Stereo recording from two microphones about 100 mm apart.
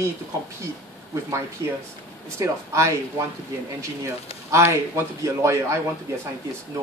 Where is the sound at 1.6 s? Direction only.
30° right (ahead or behind).